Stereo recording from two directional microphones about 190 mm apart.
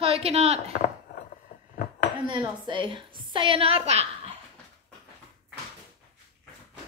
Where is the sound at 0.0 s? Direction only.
30° right (ahead or behind).